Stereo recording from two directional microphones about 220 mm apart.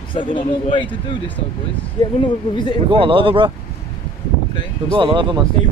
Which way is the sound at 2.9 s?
25° right (ahead or behind).